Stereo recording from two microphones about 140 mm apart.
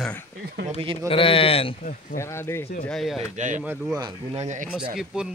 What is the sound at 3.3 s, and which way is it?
Speech, 60° right (ahead or behind).